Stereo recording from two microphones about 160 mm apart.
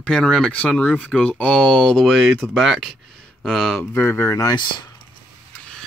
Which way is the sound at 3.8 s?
15° left (ahead or behind).